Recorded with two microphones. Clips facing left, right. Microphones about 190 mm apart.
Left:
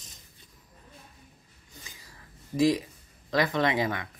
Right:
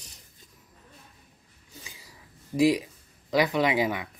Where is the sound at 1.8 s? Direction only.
10° right (ahead or behind).